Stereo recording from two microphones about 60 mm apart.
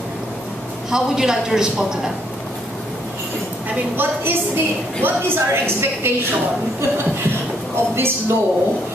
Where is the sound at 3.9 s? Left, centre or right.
Right.